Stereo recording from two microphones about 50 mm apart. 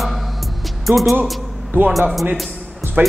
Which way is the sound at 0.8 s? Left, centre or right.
Centre.